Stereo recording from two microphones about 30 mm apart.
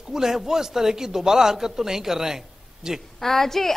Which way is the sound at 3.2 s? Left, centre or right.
Centre.